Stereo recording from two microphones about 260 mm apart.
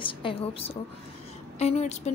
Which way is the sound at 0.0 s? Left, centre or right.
Centre.